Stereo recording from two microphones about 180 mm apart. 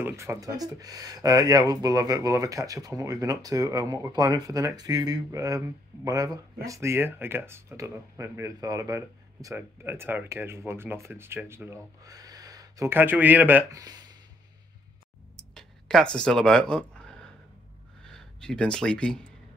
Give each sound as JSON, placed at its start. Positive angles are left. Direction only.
{"t": 0.0, "sound": "speech", "side_deg": -15}
{"t": 15.5, "sound": "speech", "side_deg": 5}
{"t": 18.1, "sound": "speech", "side_deg": 5}